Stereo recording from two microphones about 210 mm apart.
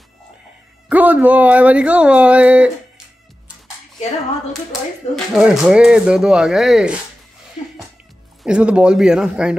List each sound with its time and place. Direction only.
0.8 s speech: 5° right (ahead or behind)
5.1 s speech: centre (ahead or behind)
7.6 s music: 35° left (ahead or behind)
8.5 s speech: 5° right (ahead or behind)